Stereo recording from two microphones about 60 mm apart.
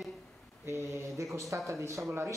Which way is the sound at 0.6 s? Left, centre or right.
Right.